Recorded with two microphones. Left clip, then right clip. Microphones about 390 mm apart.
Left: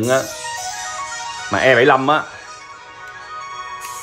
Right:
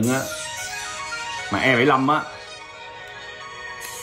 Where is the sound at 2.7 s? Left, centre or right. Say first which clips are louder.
Left 2 dB; centre.